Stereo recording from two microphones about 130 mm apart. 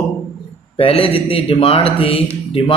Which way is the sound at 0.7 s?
45° left (ahead or behind).